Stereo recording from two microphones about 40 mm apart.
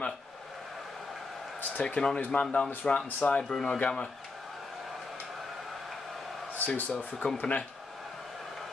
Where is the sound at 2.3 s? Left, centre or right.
Left.